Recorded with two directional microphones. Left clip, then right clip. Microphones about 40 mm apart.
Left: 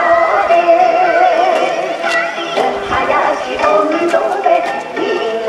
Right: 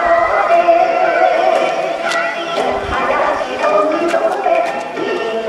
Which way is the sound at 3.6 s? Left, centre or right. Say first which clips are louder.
Left 2 dB; left.